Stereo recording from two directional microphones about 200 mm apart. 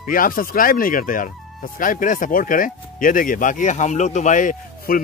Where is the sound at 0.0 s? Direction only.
45° left (ahead or behind).